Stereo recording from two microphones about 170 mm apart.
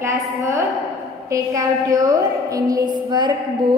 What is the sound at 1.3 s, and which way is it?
A woman's voice, 20° right (ahead or behind).